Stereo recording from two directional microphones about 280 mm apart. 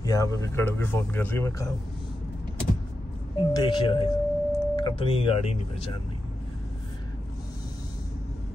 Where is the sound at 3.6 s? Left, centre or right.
Centre.